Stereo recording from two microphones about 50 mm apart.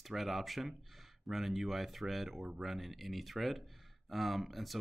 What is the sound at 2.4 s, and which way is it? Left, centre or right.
Speech, centre.